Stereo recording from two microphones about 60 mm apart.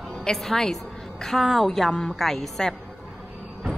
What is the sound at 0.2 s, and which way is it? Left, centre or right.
A woman's voice, centre.